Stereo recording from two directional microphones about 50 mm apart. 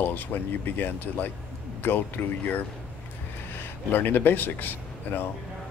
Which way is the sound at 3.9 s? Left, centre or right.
Left.